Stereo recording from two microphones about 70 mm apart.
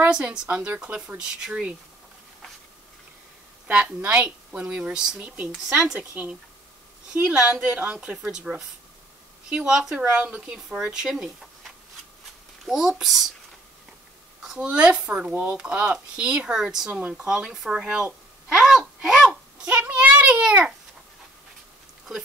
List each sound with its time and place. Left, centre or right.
0.1 s speech: centre
3.7 s speech: centre
10.5 s speech: centre
12.6 s speech: centre
14.4 s speech: centre